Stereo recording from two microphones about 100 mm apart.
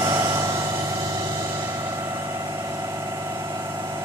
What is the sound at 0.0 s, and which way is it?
Vehicle, 35° right (ahead or behind).